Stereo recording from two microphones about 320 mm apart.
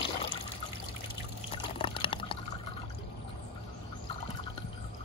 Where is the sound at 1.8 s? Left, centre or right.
Centre.